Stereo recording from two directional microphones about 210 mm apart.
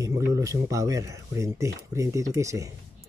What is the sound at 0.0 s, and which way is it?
Speech, 15° right (ahead or behind).